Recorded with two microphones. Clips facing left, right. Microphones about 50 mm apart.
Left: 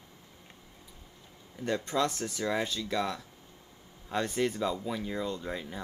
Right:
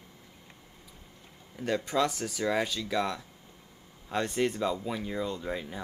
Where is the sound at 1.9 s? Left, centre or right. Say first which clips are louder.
Right 2 dB; centre.